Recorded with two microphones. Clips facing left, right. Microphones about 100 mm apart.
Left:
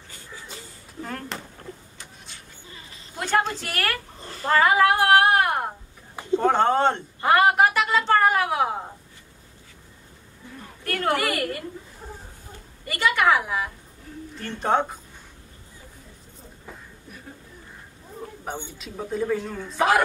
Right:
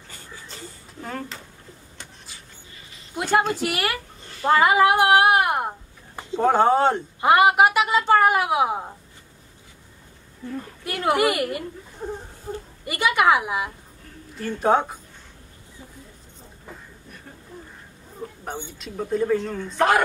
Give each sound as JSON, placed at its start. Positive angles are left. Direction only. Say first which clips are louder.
{"t": 3.2, "sound": "a woman's voice", "louder": "right 3 dB", "side_deg": -10}
{"t": 10.8, "sound": "a woman's voice", "louder": "right 3 dB", "side_deg": -10}
{"t": 12.8, "sound": "a woman's voice", "louder": "right 2 dB", "side_deg": -15}
{"t": 14.4, "sound": "speech", "louder": "right 3 dB", "side_deg": -5}
{"t": 18.7, "sound": "speech", "louder": "right 4 dB", "side_deg": 0}